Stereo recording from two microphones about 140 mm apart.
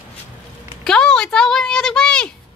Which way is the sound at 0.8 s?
5° left (ahead or behind).